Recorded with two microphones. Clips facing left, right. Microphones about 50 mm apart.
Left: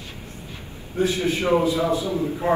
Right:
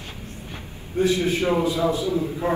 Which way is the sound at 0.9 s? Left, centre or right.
Left.